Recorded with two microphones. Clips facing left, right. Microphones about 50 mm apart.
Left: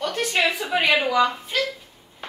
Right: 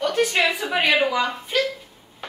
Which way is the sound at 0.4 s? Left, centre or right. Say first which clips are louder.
Right 1 dB; centre.